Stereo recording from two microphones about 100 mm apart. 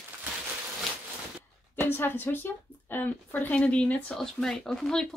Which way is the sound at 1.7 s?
20° left (ahead or behind).